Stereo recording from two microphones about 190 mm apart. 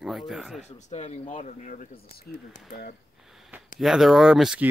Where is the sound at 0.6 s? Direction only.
35° left (ahead or behind).